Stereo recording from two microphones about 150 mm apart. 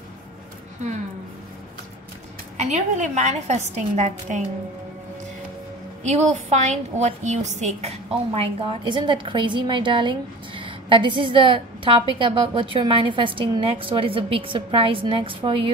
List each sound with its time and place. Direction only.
2.6 s a woman's voice: 50° right (ahead or behind)
6.0 s a woman's voice: 50° right (ahead or behind); by 15.7 s 35° right (ahead or behind)